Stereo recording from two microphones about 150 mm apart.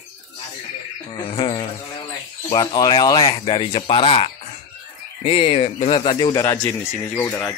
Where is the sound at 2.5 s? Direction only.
30° left (ahead or behind).